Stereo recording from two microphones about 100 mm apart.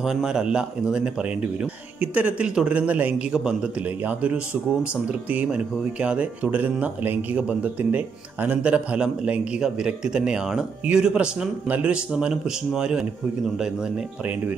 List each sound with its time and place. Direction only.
0.0 s speech: 5° right (ahead or behind)